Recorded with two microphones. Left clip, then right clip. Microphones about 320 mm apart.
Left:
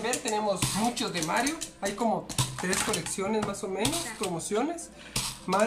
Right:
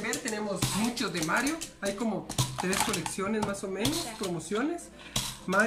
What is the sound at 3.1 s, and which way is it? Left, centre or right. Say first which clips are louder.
Speech: left 1 dB; centre.